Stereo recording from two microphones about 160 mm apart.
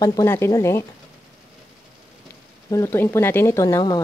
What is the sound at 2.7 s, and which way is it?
Speech, 15° left (ahead or behind).